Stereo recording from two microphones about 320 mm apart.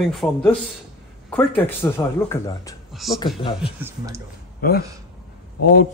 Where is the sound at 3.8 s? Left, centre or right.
Centre.